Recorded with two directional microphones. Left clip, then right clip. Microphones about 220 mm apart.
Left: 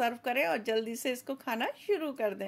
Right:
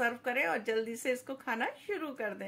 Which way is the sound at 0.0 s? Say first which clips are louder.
Left 2 dB; 45° left (ahead or behind).